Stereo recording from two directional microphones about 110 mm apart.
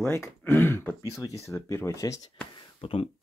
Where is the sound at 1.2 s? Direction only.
30° left (ahead or behind).